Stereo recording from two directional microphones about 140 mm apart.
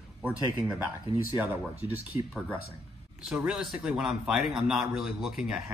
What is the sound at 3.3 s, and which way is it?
A man's voice, 5° right (ahead or behind).